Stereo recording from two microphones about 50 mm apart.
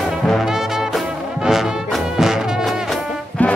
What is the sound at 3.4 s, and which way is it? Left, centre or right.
Music, left.